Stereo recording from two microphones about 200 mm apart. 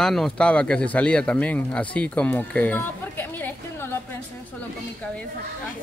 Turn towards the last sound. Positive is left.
turn(degrees=10)  # may be behind; listen again after turning